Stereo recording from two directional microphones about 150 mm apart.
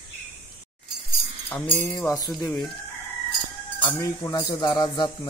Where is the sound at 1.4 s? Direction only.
10° left (ahead or behind).